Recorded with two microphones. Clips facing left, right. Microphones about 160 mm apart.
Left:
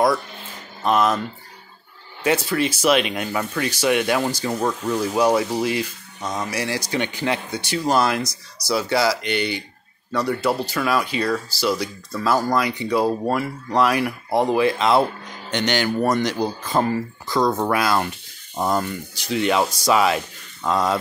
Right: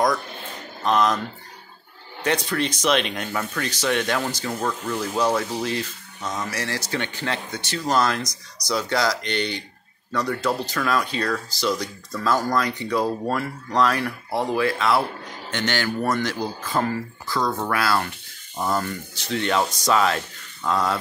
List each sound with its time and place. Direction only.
0.8 s speech: 5° left (ahead or behind)
2.2 s speech: 5° left (ahead or behind)